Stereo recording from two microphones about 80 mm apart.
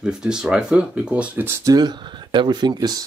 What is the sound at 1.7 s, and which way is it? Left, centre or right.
Speech, right.